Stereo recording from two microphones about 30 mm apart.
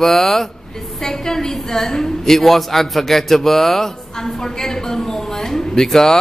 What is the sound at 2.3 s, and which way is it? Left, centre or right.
A man's voice, centre.